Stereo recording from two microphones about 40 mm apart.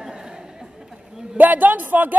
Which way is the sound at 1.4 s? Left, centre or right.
Right.